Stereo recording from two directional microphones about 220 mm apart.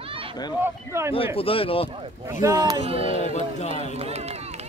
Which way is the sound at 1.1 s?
25° left (ahead or behind).